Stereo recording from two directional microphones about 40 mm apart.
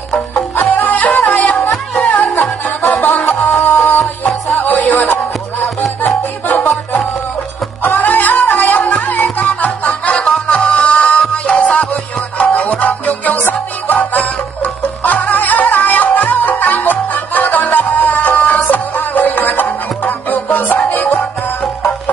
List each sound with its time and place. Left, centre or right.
0.3 s music: left
1.2 s music: left
11.8 s music: left
13.4 s music: left